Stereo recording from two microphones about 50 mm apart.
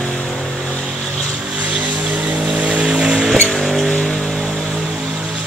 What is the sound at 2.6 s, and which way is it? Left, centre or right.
Vehicle, right.